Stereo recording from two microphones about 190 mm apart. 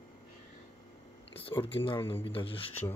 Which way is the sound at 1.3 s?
30° left (ahead or behind).